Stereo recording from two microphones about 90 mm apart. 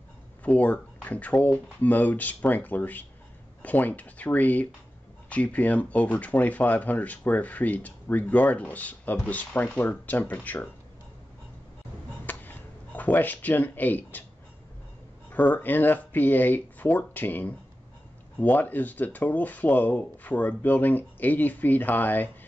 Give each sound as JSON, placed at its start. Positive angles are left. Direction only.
{"t": 0.4, "sound": "speech", "side_deg": 15}
{"t": 12.3, "sound": "a sound", "side_deg": 20}
{"t": 15.3, "sound": "speech", "side_deg": 20}